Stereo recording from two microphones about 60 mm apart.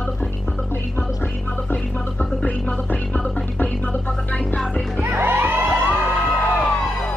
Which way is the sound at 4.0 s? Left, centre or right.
Centre.